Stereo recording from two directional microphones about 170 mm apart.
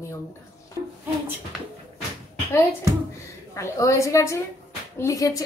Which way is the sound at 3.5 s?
20° left (ahead or behind).